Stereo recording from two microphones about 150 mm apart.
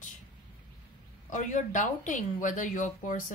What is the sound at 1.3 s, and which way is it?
Speech, 55° left (ahead or behind).